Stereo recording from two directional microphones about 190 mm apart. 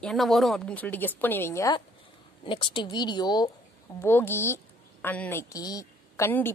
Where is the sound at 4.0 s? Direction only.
10° left (ahead or behind).